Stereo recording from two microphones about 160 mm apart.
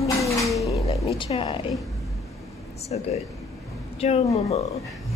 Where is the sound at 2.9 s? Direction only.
45° left (ahead or behind).